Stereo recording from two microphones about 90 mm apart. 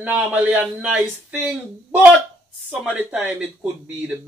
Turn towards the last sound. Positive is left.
turn(degrees=-15)  # may be behind; listen again after turning